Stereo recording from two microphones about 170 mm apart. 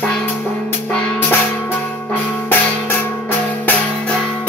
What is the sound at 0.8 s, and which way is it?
Music, 5° left (ahead or behind).